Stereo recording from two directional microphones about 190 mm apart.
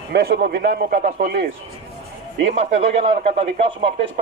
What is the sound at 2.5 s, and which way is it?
Speech, 35° right (ahead or behind).